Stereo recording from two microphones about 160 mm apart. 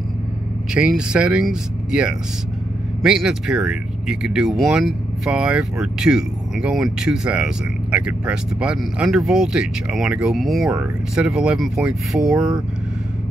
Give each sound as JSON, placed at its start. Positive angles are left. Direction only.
{"t": 0.7, "sound": "speech", "side_deg": -5}